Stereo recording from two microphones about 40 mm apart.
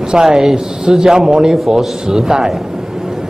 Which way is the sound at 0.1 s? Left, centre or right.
Centre.